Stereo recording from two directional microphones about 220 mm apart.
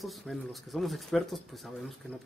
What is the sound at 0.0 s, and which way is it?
Speech, centre (ahead or behind).